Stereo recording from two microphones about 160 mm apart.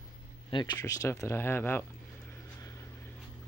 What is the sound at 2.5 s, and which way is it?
Vehicle, 20° left (ahead or behind).